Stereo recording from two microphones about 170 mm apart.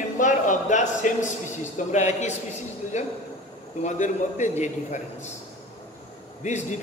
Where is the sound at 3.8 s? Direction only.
45° left (ahead or behind).